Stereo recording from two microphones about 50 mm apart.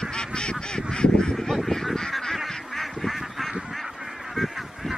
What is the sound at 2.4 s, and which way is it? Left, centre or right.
Duck, centre.